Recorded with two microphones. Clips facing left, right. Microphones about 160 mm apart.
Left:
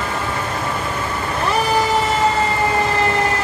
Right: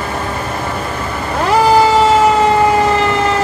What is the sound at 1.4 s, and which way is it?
Vehicle, 90° right.